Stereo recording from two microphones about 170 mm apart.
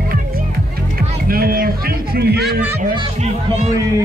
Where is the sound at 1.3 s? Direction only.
60° right (ahead or behind).